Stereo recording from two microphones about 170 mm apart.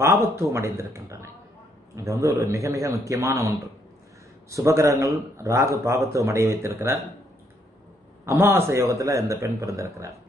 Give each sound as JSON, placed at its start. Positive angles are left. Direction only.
{"t": 0.0, "sound": "a man's voice", "side_deg": -15}
{"t": 8.3, "sound": "a man's voice", "side_deg": -15}